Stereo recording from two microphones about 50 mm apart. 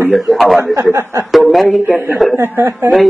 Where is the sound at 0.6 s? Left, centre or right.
Right.